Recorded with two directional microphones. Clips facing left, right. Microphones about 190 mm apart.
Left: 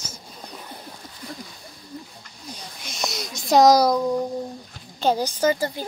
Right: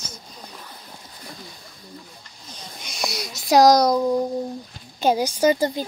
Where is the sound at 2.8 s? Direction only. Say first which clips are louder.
Right 1 dB; centre (ahead or behind).